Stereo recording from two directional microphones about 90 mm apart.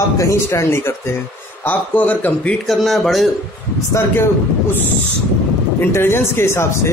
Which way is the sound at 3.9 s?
25° left (ahead or behind).